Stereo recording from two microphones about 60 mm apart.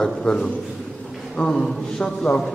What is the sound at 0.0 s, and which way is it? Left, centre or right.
A man's voice, centre.